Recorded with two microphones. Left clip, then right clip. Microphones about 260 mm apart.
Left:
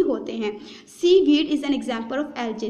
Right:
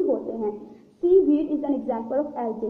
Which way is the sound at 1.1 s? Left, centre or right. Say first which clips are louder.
Left 2 dB; left.